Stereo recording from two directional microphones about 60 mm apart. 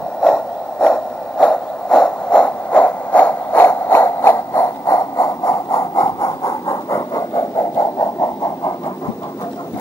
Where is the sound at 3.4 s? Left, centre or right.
Left.